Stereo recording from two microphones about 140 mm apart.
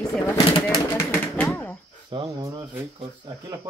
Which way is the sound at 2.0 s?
30° right (ahead or behind).